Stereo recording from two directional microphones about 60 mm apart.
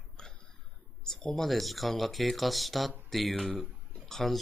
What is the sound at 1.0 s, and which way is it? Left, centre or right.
Speech, centre.